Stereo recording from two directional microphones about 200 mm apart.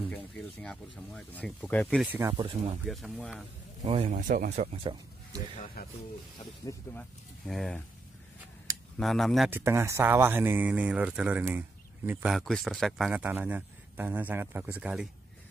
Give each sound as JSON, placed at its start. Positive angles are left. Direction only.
{"t": 0.1, "sound": "speech", "side_deg": 5}
{"t": 2.3, "sound": "speech", "side_deg": -25}
{"t": 2.8, "sound": "speech", "side_deg": 0}
{"t": 3.8, "sound": "speech", "side_deg": -30}
{"t": 5.8, "sound": "speech", "side_deg": 50}
{"t": 6.6, "sound": "speech", "side_deg": 15}
{"t": 8.9, "sound": "speech", "side_deg": 0}
{"t": 9.5, "sound": "speech", "side_deg": -10}